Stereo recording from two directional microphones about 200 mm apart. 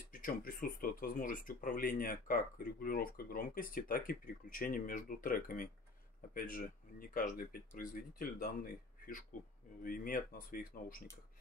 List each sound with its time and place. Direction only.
0.1 s speech: 45° left (ahead or behind)